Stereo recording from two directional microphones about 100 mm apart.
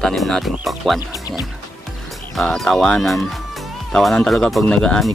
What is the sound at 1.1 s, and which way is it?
Speech, 40° left (ahead or behind).